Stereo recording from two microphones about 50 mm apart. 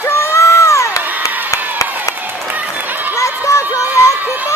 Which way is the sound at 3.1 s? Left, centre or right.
Left.